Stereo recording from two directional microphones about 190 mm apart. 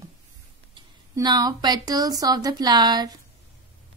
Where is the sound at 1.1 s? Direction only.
20° right (ahead or behind).